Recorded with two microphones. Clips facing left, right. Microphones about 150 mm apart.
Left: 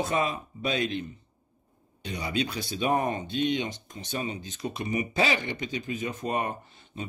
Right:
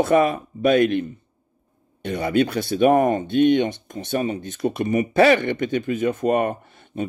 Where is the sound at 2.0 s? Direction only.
55° right (ahead or behind).